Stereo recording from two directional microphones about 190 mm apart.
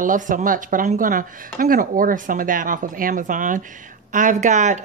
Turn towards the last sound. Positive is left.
turn(degrees=-40)  # may be behind; listen again after turning